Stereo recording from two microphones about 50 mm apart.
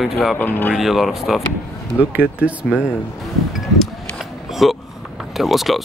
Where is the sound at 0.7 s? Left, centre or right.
Centre.